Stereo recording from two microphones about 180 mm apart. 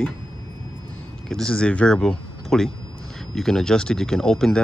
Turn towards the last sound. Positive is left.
turn(degrees=5)  # may be behind; listen again after turning